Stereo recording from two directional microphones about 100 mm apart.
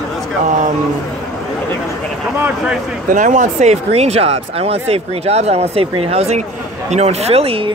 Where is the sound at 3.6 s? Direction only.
90° right; by 7.7 s 70° right (ahead or behind).